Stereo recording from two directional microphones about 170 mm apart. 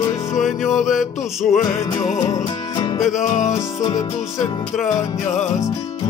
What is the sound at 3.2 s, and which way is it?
Music, 45° left (ahead or behind).